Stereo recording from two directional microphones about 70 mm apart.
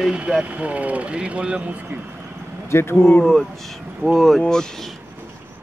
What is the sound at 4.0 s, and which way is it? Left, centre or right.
Speech, centre.